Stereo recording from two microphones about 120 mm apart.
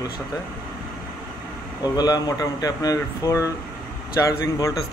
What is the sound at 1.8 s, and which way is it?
Speech, 35° left (ahead or behind).